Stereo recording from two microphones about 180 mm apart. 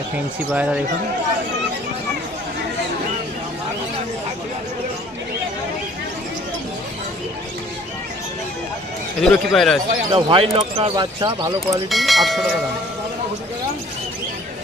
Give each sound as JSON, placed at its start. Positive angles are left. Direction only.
{"t": 0.5, "sound": "speech", "side_deg": -10}
{"t": 9.2, "sound": "speech", "side_deg": 0}
{"t": 10.1, "sound": "speech", "side_deg": -30}
{"t": 11.9, "sound": "speech", "side_deg": 0}